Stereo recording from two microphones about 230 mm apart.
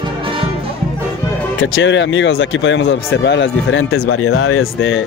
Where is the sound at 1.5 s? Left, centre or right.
Left.